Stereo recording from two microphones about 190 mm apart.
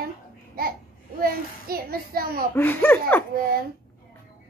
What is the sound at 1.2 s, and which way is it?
A child's voice, 50° right (ahead or behind).